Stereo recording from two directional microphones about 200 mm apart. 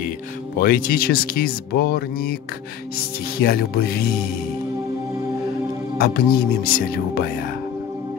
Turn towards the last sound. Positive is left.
turn(degrees=50)  # may be behind; listen again after turning